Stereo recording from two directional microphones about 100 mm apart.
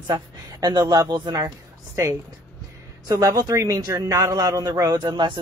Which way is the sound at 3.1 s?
35° right (ahead or behind).